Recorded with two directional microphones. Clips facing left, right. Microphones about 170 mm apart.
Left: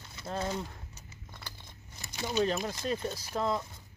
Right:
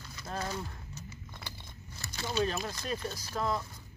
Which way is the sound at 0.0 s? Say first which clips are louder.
Left 3 dB; 25° left (ahead or behind).